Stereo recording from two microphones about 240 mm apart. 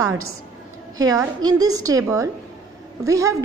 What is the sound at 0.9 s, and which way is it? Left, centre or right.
A woman's voice, centre.